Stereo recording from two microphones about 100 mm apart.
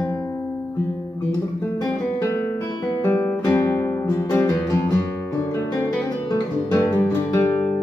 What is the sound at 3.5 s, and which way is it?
Music, 30° left (ahead or behind).